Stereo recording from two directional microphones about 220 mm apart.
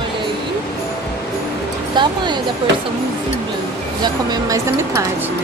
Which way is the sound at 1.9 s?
20° right (ahead or behind).